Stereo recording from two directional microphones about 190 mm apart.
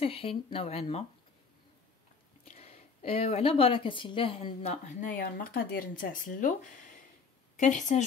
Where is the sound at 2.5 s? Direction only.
30° left (ahead or behind).